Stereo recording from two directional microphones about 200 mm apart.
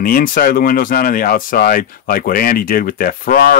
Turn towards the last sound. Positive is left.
turn(degrees=45)  # may be behind; listen again after turning